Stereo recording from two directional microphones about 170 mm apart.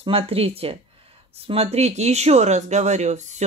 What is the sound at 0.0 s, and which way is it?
Speech, 35° right (ahead or behind).